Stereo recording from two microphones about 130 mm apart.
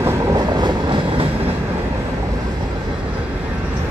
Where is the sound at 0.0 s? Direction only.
30° right (ahead or behind).